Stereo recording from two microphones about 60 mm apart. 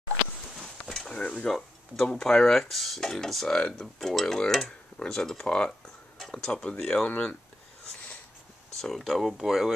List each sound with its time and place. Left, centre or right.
0.8 s a sound: centre
1.2 s speech: centre
4.0 s speech: centre
4.6 s speech: centre
8.7 s speech: centre